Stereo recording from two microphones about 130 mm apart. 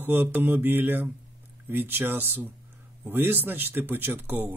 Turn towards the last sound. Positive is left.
turn(degrees=-15)  # may be behind; listen again after turning